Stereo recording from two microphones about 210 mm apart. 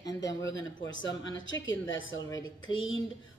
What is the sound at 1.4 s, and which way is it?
Speech, 60° left (ahead or behind).